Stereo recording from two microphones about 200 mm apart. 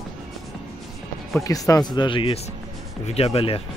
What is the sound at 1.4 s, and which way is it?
Speech, 15° left (ahead or behind).